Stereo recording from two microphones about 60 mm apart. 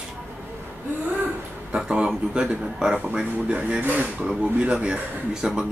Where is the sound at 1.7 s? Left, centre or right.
Centre.